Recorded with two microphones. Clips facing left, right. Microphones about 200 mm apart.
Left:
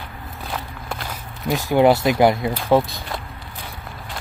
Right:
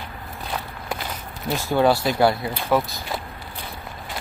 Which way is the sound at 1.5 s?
15° left (ahead or behind).